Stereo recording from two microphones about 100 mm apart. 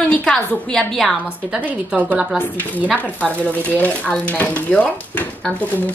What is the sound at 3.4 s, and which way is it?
Speech, 15° left (ahead or behind).